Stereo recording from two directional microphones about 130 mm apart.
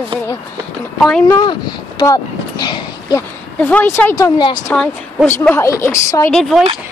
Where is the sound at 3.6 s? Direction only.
15° left (ahead or behind).